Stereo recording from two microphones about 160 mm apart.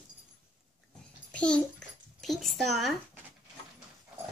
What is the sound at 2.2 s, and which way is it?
Speech, centre (ahead or behind).